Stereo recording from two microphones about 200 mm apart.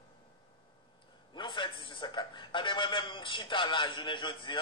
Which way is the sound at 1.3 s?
25° left (ahead or behind).